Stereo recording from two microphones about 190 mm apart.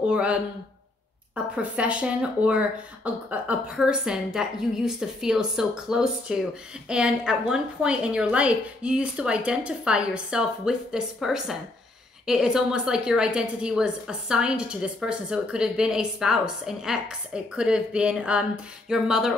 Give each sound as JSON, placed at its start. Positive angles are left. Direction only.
{"t": 0.0, "sound": "a woman's voice", "side_deg": -5}